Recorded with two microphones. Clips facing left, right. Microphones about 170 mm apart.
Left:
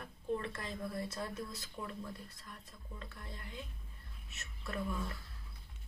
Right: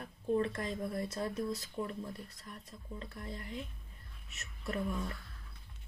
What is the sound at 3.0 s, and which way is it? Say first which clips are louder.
Speech: right 4 dB; 35° right (ahead or behind).